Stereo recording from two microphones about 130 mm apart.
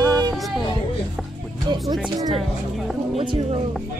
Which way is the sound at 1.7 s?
30° right (ahead or behind).